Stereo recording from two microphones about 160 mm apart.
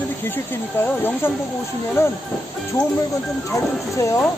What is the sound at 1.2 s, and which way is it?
Speech, 15° left (ahead or behind).